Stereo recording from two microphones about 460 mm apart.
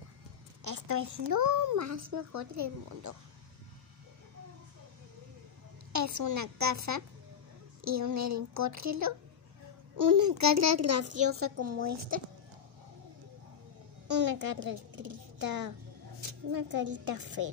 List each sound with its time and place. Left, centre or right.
0.7 s a woman's voice: right
5.9 s a woman's voice: right
14.3 s a woman's voice: right